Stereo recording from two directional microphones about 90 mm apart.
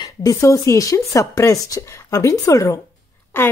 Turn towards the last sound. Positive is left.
turn(degrees=25)  # may be behind; listen again after turning